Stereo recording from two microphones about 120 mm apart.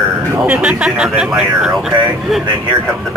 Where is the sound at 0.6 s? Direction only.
5° right (ahead or behind).